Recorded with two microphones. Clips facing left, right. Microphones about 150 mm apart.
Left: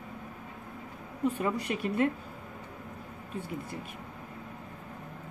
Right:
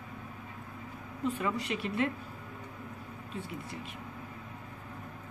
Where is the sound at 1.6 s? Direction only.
45° left (ahead or behind).